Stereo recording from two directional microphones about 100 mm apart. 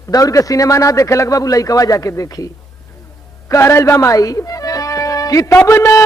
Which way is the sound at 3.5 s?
30° left (ahead or behind).